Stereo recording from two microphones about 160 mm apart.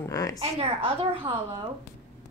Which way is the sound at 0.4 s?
35° right (ahead or behind).